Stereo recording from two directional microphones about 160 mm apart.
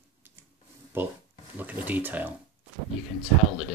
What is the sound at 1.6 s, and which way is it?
Speech, 10° right (ahead or behind).